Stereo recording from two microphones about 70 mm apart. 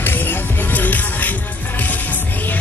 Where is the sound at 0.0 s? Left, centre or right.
Left.